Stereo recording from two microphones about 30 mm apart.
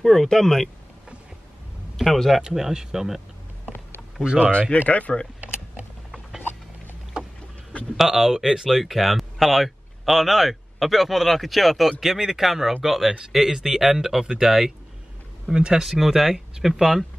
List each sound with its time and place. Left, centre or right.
0.0 s speech: centre
2.0 s speech: centre
2.5 s speech: centre
4.5 s speech: left
4.8 s speech: left
8.0 s speech: centre
8.6 s speech: centre
12.0 s speech: centre
15.5 s speech: right
15.8 s speech: centre